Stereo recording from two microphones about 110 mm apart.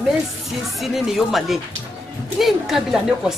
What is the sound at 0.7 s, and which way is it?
A woman's voice, centre (ahead or behind).